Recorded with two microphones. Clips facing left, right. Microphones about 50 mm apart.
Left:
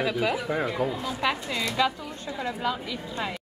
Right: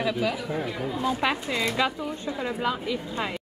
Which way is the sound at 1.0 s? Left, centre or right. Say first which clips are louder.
Right 4 dB; right.